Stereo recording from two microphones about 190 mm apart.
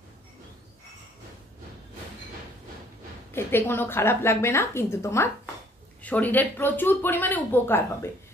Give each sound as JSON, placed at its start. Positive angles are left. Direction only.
{"t": 3.3, "sound": "speech", "side_deg": 10}